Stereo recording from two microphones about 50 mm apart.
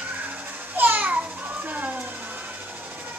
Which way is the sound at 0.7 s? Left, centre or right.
Right.